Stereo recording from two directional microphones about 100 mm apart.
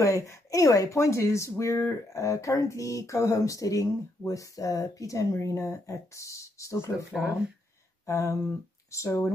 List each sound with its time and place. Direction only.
0.0 s speech: 30° left (ahead or behind)
7.1 s speech: 5° right (ahead or behind)
8.1 s speech: 30° left (ahead or behind)